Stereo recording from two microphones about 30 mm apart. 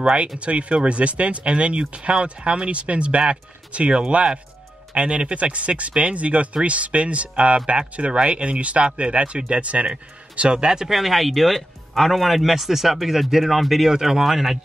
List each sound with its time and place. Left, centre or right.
0.4 s speech: right
10.5 s speech: right
10.9 s speech: centre
13.9 s speech: centre
14.2 s speech: centre